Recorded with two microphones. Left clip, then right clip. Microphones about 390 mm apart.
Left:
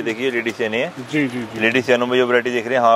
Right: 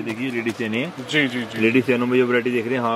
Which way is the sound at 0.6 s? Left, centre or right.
Left.